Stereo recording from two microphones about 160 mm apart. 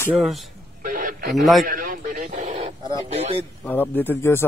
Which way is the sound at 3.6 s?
10° left (ahead or behind).